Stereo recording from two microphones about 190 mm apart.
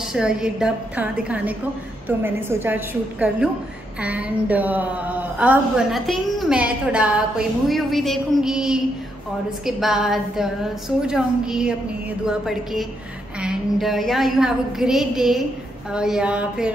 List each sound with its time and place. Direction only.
0.1 s a woman's voice: 5° right (ahead or behind)